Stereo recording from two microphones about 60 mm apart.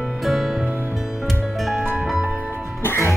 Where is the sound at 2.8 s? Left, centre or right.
Left.